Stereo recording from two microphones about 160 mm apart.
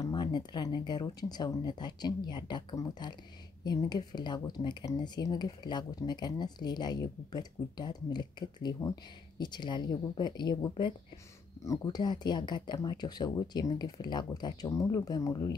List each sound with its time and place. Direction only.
0.0 s speech: 25° left (ahead or behind)